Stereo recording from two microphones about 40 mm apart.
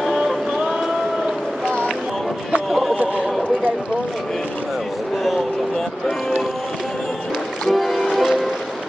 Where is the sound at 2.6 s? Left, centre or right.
Centre.